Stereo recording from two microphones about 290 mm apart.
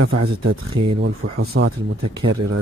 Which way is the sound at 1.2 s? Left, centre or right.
Right.